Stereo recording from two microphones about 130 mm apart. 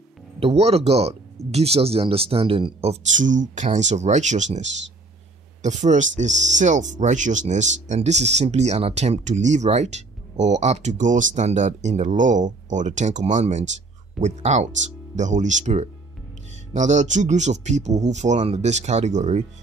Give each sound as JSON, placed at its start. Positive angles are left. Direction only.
{"t": 0.4, "sound": "speech", "side_deg": -50}
{"t": 3.1, "sound": "speech", "side_deg": -75}
{"t": 5.9, "sound": "speech", "side_deg": -70}